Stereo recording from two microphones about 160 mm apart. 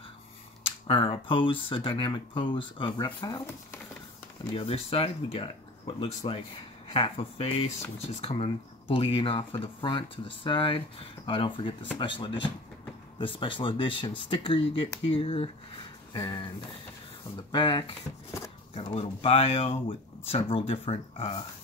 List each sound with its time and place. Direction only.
0.7 s speech: 35° left (ahead or behind)
4.6 s speech: 35° left (ahead or behind)
16.1 s a sound: 30° left (ahead or behind)
17.5 s speech: 30° left (ahead or behind)